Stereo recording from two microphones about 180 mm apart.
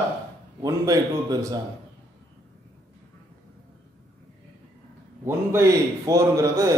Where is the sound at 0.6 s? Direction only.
20° right (ahead or behind).